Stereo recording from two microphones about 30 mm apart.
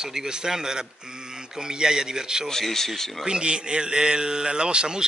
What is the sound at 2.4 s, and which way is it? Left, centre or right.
Speech, centre.